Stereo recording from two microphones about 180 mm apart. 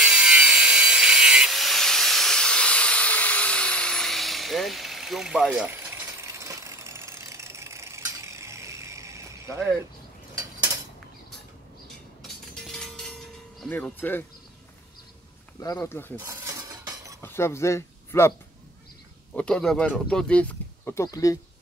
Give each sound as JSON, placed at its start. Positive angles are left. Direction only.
{"t": 0.0, "sound": "wood", "side_deg": -5}
{"t": 6.2, "sound": "engine", "side_deg": -15}
{"t": 10.3, "sound": "a sound", "side_deg": -15}
{"t": 12.2, "sound": "a sound", "side_deg": 0}
{"t": 15.6, "sound": "speech", "side_deg": 20}
{"t": 16.2, "sound": "cutlery", "side_deg": -15}
{"t": 17.2, "sound": "speech", "side_deg": 15}
{"t": 19.3, "sound": "speech", "side_deg": 5}